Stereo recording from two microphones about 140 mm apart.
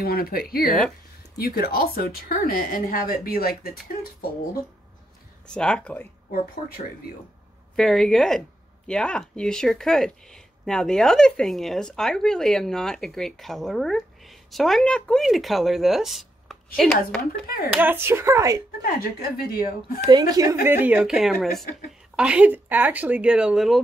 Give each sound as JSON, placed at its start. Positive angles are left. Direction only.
{"t": 0.0, "sound": "speech", "side_deg": 90}
{"t": 0.7, "sound": "speech", "side_deg": 0}
{"t": 1.4, "sound": "speech", "side_deg": 90}
{"t": 5.5, "sound": "speech", "side_deg": 5}
{"t": 7.7, "sound": "speech", "side_deg": 0}
{"t": 17.6, "sound": "speech", "side_deg": -15}
{"t": 18.9, "sound": "speech", "side_deg": 90}
{"t": 20.1, "sound": "a woman's voice", "side_deg": -30}
{"t": 20.6, "sound": "speech", "side_deg": -15}